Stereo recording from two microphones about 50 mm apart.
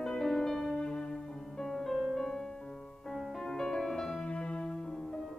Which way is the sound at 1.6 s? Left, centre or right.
Centre.